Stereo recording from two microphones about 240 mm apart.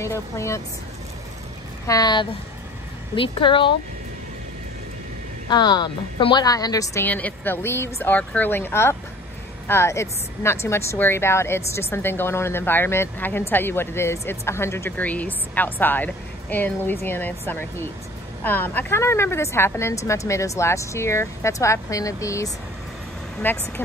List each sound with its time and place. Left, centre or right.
0.0 s speech: centre
1.9 s speech: centre
5.5 s speech: centre